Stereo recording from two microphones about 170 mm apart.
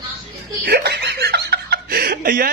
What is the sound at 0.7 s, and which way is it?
Laughter, 75° right (ahead or behind).